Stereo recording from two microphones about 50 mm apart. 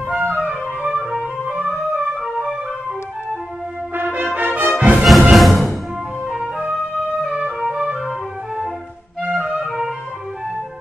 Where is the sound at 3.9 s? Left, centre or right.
Right.